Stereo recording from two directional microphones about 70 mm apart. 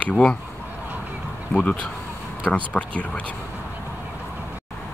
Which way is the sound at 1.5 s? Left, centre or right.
Centre.